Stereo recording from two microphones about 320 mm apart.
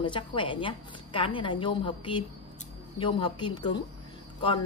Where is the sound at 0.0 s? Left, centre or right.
Centre.